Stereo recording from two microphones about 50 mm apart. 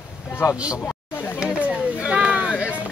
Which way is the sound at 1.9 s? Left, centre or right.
Right.